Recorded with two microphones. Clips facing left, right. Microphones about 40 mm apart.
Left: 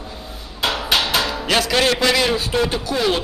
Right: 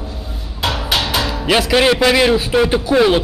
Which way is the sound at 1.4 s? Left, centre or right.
Centre.